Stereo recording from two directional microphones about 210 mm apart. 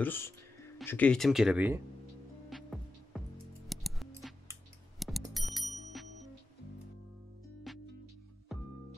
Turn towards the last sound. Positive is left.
turn(degrees=0)  # may be behind; listen again after turning